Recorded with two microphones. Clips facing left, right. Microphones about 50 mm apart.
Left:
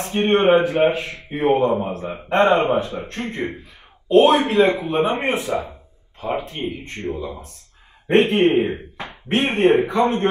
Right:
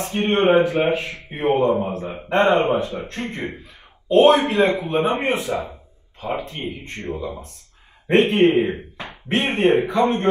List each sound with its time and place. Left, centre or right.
0.0 s speech: left
4.2 s a man's voice: right
4.6 s speech: left
6.9 s a man's voice: right
8.1 s speech: left